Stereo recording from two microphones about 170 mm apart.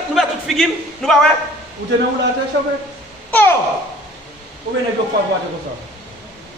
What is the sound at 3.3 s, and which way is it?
Speech, 10° left (ahead or behind).